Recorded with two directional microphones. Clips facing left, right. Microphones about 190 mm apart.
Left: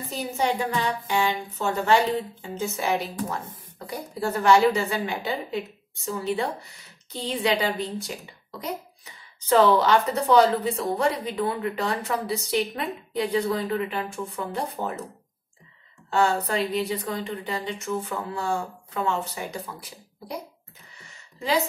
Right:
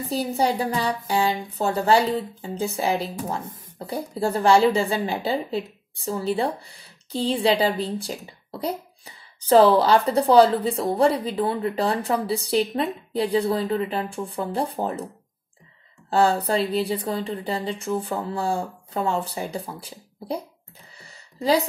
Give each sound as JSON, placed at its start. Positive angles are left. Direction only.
{"t": 0.1, "sound": "speech", "side_deg": -35}
{"t": 16.1, "sound": "speech", "side_deg": -35}
{"t": 21.0, "sound": "a sound", "side_deg": -35}